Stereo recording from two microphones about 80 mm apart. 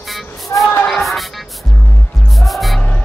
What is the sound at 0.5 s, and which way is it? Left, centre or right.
Speech, left.